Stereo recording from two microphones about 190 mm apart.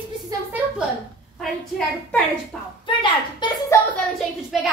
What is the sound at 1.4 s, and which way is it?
Speech, centre (ahead or behind).